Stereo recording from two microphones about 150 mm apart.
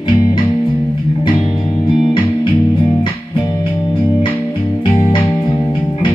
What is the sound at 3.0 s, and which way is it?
Music, 30° left (ahead or behind).